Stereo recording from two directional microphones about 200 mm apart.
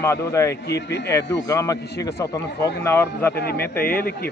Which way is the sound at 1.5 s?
15° left (ahead or behind).